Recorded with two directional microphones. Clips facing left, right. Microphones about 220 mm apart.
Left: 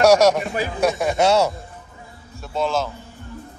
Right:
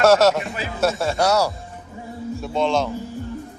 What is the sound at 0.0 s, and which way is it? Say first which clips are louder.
Speech: left 1 dB; 15° left (ahead or behind).